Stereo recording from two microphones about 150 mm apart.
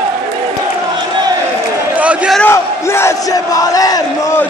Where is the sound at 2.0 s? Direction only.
10° right (ahead or behind).